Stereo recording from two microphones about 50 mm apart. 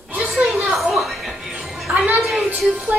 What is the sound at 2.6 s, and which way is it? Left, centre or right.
Music, centre.